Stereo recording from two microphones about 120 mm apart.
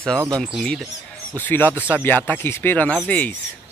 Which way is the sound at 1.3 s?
15° left (ahead or behind).